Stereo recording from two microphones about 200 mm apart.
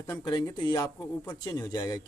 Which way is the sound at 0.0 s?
20° left (ahead or behind).